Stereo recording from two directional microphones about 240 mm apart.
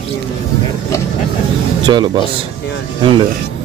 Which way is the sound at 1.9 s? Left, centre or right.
Centre.